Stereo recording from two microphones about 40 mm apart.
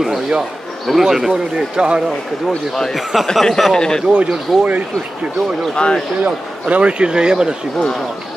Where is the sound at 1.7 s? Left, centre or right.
Right.